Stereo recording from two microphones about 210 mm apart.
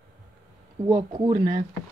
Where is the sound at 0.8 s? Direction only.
20° right (ahead or behind).